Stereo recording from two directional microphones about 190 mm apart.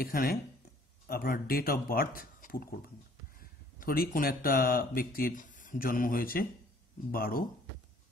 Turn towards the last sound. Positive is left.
turn(degrees=50)  # may be behind; listen again after turning